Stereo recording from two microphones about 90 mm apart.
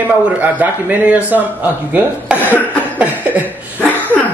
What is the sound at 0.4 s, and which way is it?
A man's voice, 20° right (ahead or behind).